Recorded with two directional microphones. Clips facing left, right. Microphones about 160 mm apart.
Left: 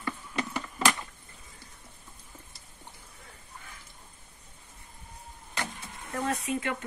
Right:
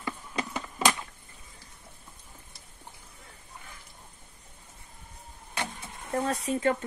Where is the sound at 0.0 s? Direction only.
15° right (ahead or behind).